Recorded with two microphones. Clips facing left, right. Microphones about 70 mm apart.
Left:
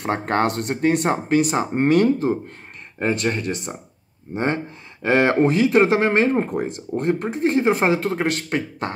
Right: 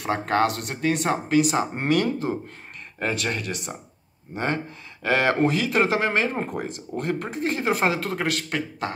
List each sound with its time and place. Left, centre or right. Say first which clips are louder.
0.0 s speech: left 1 dB; left
5.0 s speech: left 4 dB; left
6.3 s speech: left 7 dB; centre
6.6 s speech: left 6 dB; left